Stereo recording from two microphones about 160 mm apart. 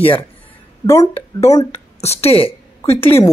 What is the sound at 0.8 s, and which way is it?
Speech, 15° left (ahead or behind).